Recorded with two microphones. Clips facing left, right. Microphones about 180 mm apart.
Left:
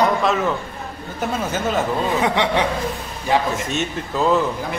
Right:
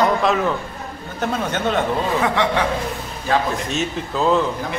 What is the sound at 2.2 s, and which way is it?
Speech, 15° left (ahead or behind).